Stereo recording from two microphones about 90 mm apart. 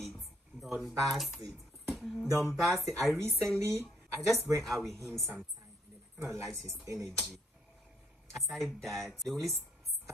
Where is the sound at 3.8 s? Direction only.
Centre (ahead or behind).